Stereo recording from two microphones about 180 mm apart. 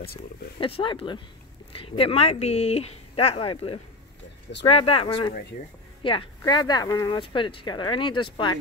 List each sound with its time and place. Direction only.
0.6 s speech: 30° left (ahead or behind)